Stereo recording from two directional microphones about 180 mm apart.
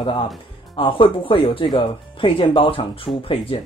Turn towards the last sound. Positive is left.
turn(degrees=30)  # may be behind; listen again after turning